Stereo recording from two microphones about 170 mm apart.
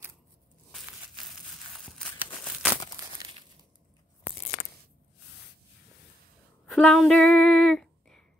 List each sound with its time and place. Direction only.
0.7 s crushing: centre (ahead or behind)
1.9 s crumpling: 5° left (ahead or behind)
3.0 s crumpling: 20° right (ahead or behind)
6.6 s a sound: 5° left (ahead or behind)